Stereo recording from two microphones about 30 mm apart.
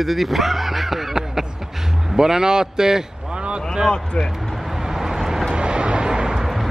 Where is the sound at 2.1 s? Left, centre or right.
Right.